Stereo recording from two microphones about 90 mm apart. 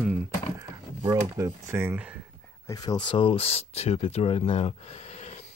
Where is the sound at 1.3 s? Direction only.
30° right (ahead or behind).